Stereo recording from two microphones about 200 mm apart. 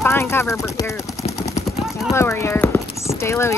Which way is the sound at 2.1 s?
15° left (ahead or behind).